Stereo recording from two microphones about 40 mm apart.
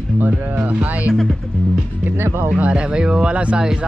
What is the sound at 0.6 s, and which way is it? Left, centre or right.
Speech, right.